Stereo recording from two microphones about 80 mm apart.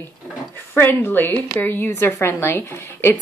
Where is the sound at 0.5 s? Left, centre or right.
Left.